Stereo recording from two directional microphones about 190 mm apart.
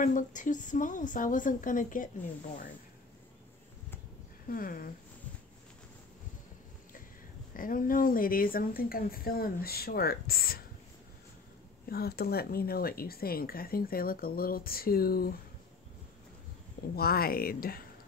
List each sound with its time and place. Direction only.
0.0 s speech: 40° left (ahead or behind)
4.5 s speech: 50° left (ahead or behind)
7.5 s speech: 45° left (ahead or behind)
11.9 s speech: 55° left (ahead or behind)
16.9 s speech: 55° left (ahead or behind)